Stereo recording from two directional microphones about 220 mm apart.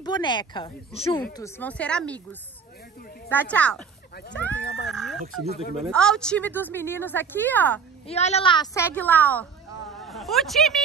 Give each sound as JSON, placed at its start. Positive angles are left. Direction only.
{"t": 0.0, "sound": "speech", "side_deg": 20}
{"t": 1.3, "sound": "a woman's voice", "side_deg": 10}
{"t": 3.3, "sound": "a woman's voice", "side_deg": 10}
{"t": 4.8, "sound": "a sound", "side_deg": 0}
{"t": 5.8, "sound": "a woman's voice", "side_deg": 5}
{"t": 8.1, "sound": "a woman's voice", "side_deg": 30}